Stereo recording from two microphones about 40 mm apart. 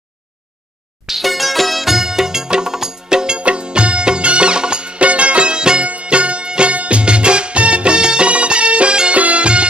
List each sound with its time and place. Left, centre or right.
1.0 s music: centre
3.3 s music: right